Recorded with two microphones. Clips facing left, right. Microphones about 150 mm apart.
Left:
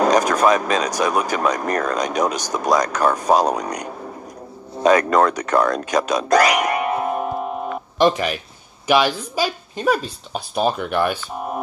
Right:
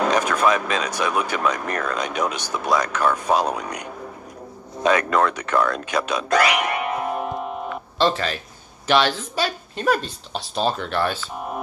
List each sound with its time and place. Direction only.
0.0 s speech: 40° left (ahead or behind)
8.0 s speech: 15° left (ahead or behind)